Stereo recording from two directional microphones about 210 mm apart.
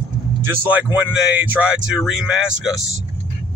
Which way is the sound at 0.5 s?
10° right (ahead or behind).